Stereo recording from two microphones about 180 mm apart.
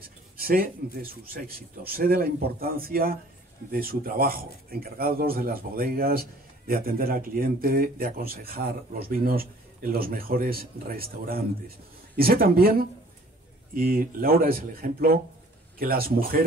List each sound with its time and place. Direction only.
0.4 s speech: 55° right (ahead or behind)